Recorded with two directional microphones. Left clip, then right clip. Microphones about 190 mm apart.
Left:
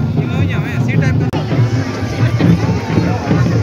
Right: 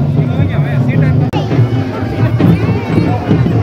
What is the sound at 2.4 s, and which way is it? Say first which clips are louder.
Horse: right 2 dB; 60° right (ahead or behind).